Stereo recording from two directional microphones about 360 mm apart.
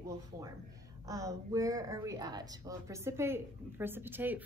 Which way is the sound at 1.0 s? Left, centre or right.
Centre.